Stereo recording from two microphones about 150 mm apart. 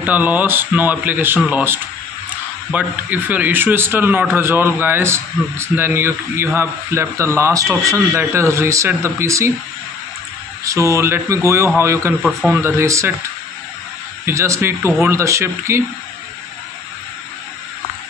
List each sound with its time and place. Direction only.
0.0 s a man's voice: 10° right (ahead or behind)
10.6 s a man's voice: 20° right (ahead or behind)
12.2 s a man's voice: centre (ahead or behind)
12.4 s a man's voice: 15° right (ahead or behind)
14.2 s a man's voice: 20° right (ahead or behind)